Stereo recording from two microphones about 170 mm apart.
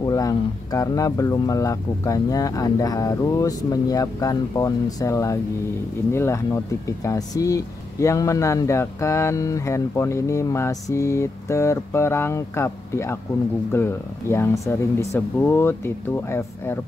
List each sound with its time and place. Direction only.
0.0 s speech: 20° left (ahead or behind)